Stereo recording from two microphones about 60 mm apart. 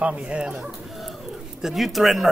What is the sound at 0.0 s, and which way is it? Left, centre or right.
Speech, centre.